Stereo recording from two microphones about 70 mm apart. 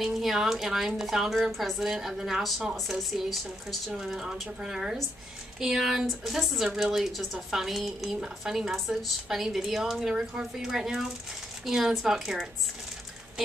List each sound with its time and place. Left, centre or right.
0.0 s a woman's voice: centre